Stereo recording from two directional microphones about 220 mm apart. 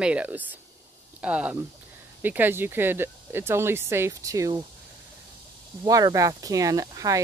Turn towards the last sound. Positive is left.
turn(degrees=-15)  # may be behind; listen again after turning